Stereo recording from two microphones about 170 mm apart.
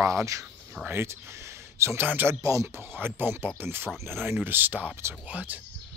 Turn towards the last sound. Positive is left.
turn(degrees=-10)  # may be behind; listen again after turning